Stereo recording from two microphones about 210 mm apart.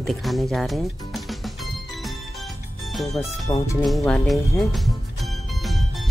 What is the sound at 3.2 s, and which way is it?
Speech, 15° left (ahead or behind).